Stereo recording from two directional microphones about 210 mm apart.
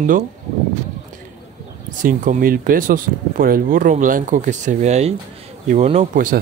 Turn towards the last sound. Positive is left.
turn(degrees=-40)  # may be behind; listen again after turning